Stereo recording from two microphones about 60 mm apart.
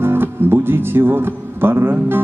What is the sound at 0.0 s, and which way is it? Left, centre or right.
Speech, right.